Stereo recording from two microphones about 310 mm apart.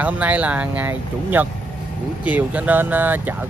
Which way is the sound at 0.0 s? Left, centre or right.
Centre.